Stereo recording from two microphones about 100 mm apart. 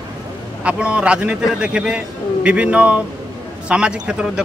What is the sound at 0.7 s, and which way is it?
A man's voice, 10° right (ahead or behind).